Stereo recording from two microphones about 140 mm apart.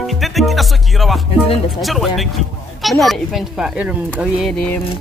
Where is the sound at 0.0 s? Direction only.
Centre (ahead or behind).